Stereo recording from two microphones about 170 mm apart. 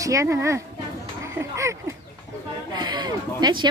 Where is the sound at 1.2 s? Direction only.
15° right (ahead or behind).